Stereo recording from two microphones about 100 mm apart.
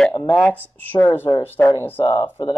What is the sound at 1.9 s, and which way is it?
Speech, 55° left (ahead or behind).